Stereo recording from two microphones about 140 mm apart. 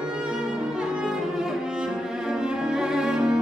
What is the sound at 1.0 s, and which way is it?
Cello, 5° right (ahead or behind).